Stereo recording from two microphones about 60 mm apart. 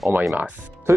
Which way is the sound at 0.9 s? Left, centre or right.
Right.